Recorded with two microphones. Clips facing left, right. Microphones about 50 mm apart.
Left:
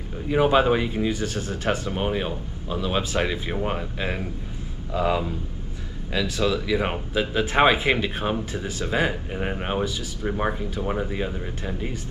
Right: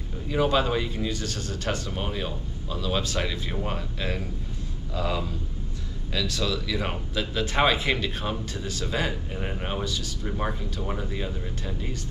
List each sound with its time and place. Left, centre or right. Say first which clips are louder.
0.3 s speech: left 5 dB; left